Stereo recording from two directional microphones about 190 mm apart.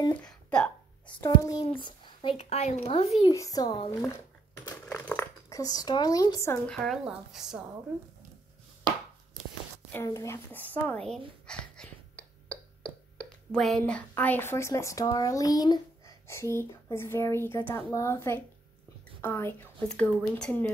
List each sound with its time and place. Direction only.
0.1 s a sound: 5° left (ahead or behind)
1.4 s a child's voice: 20° left (ahead or behind)
3.3 s a child's voice: 20° left (ahead or behind)
4.6 s coin: 15° left (ahead or behind)
6.7 s speech: centre (ahead or behind)
9.9 s speech: 15° left (ahead or behind)